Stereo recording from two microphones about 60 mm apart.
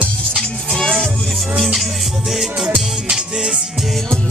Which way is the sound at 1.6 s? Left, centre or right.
Centre.